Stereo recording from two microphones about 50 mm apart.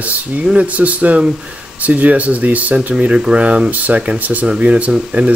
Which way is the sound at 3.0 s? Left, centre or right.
Right.